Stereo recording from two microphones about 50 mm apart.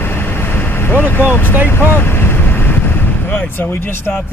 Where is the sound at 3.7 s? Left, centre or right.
Left.